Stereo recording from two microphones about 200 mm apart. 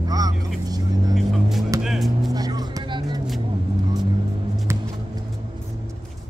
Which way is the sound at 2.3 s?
20° right (ahead or behind).